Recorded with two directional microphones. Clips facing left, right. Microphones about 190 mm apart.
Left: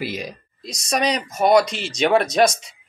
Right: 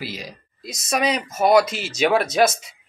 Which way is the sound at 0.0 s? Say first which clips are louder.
Left 5 dB; 20° left (ahead or behind).